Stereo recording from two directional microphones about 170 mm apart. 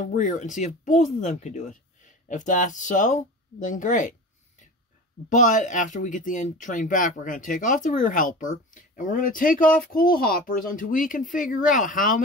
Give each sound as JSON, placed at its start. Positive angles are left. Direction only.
{"t": 0.0, "sound": "speech", "side_deg": 50}
{"t": 5.4, "sound": "speech", "side_deg": 50}